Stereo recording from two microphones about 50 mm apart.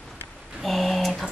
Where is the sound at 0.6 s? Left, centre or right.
Centre.